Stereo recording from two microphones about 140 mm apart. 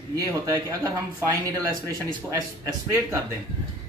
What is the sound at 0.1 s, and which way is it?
Speech, 25° right (ahead or behind).